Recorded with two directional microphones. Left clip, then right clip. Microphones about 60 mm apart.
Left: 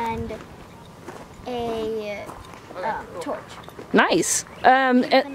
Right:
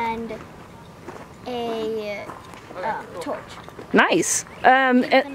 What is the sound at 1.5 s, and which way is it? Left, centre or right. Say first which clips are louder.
Speech: even; centre.